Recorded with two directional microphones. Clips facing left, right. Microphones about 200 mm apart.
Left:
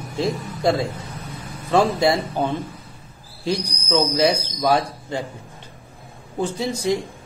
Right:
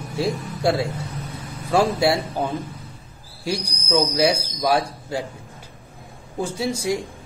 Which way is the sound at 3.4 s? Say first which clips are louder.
Left 2 dB; 10° right (ahead or behind).